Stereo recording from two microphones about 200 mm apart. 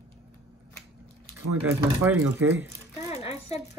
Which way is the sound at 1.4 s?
10° right (ahead or behind).